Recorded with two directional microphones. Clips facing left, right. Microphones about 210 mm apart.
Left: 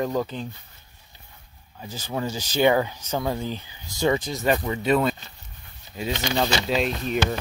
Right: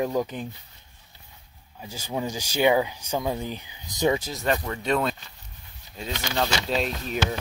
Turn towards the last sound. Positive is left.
turn(degrees=0)  # may be behind; listen again after turning